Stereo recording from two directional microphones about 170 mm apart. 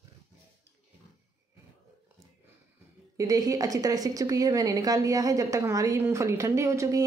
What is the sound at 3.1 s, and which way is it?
A woman's voice, 20° right (ahead or behind).